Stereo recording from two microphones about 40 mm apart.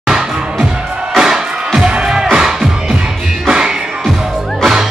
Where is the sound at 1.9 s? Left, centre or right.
Right.